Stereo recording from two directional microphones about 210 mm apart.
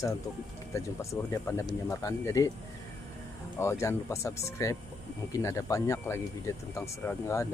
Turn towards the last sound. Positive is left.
turn(degrees=15)  # may be behind; listen again after turning